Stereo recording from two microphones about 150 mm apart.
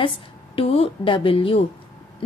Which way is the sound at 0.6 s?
40° left (ahead or behind).